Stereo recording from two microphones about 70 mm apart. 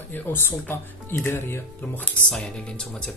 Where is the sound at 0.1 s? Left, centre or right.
Left.